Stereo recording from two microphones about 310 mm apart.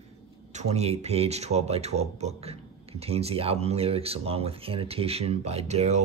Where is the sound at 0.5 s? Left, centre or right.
Right.